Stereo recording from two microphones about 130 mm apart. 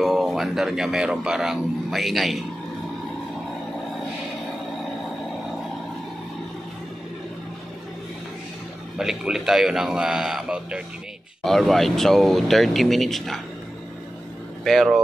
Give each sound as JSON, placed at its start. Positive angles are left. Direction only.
{"t": 0.0, "sound": "speech", "side_deg": 0}
{"t": 8.9, "sound": "speech", "side_deg": -5}
{"t": 14.6, "sound": "speech", "side_deg": 0}